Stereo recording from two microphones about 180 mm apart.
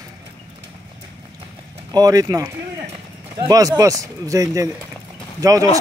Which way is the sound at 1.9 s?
20° right (ahead or behind).